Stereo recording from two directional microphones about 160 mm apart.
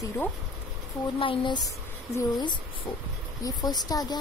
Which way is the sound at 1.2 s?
30° left (ahead or behind).